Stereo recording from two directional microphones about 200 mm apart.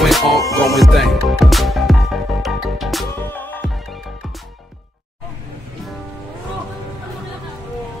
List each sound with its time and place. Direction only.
0.0 s music: centre (ahead or behind)
0.4 s music: 15° left (ahead or behind)
0.7 s music: centre (ahead or behind)
3.2 s music: 10° left (ahead or behind)